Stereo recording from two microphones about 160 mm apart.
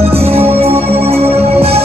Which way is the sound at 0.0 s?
40° right (ahead or behind).